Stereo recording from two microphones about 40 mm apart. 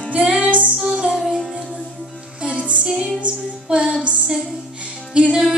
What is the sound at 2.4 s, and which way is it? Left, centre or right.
Music, right.